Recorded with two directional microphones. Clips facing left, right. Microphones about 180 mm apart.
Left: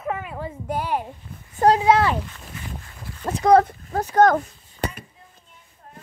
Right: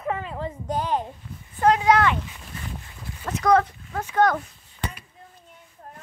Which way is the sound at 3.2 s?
35° left (ahead or behind).